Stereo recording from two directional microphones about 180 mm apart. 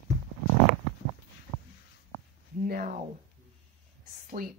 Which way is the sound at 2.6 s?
50° right (ahead or behind).